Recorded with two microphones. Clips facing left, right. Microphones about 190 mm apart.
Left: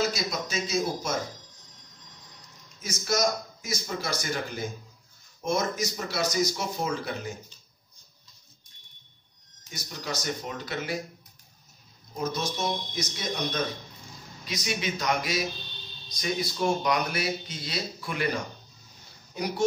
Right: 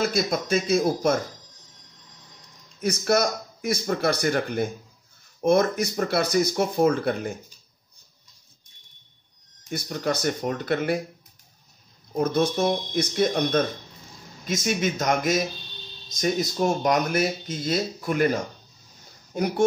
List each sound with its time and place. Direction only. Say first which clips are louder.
0.0 s speech: right 5 dB; 55° right (ahead or behind)
2.8 s speech: right 5 dB; 60° right (ahead or behind)
9.7 s speech: right 9 dB; 55° right (ahead or behind)
12.2 s speech: right 8 dB; 55° right (ahead or behind)